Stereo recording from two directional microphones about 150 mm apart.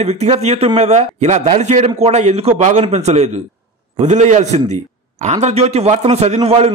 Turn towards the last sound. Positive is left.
turn(degrees=-40)  # may be behind; listen again after turning